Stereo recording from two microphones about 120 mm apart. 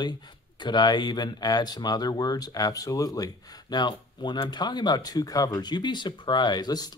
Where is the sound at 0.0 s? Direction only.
40° left (ahead or behind).